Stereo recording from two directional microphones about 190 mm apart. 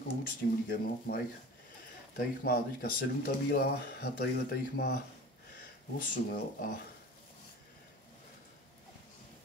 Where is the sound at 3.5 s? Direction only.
55° left (ahead or behind).